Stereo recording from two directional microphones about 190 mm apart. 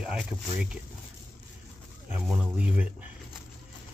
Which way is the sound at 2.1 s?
5° right (ahead or behind).